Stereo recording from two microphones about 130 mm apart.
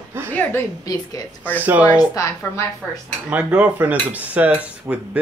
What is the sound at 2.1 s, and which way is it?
Speech, 25° left (ahead or behind).